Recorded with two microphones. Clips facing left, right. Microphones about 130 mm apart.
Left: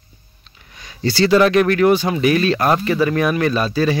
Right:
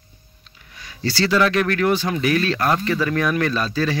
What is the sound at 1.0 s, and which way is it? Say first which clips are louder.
Speech: left 5 dB; 15° left (ahead or behind).